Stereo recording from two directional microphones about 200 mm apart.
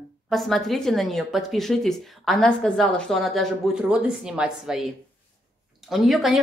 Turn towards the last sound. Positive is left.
turn(degrees=0)  # may be behind; listen again after turning